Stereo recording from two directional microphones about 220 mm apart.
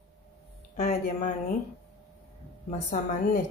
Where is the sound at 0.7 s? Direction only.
30° left (ahead or behind).